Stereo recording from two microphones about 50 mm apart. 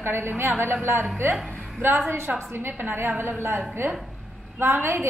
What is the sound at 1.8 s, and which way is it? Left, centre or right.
A woman's voice, right.